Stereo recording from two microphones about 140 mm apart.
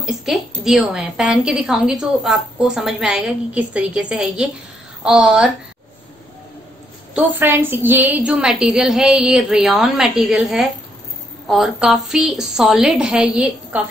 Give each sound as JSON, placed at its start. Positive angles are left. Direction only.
{"t": 0.0, "sound": "a woman's voice", "side_deg": -5}
{"t": 7.2, "sound": "a woman's voice", "side_deg": -15}